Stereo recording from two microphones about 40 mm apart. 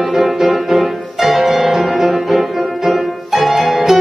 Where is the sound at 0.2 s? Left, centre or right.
Centre.